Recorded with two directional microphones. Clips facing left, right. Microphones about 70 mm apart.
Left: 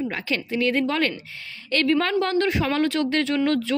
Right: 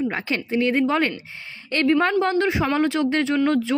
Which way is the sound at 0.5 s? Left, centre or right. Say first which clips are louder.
Right 3 dB; right.